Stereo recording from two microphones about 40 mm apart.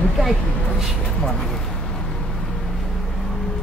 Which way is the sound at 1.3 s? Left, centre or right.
Centre.